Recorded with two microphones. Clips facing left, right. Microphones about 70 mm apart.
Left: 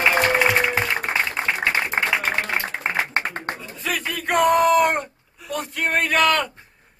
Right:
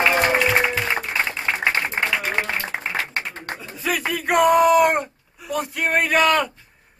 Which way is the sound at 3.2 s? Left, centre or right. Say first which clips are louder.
Left 3 dB; left.